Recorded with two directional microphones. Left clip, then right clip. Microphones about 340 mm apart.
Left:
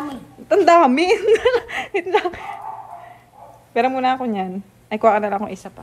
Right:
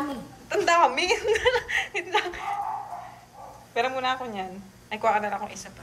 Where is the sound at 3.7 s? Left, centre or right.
Centre.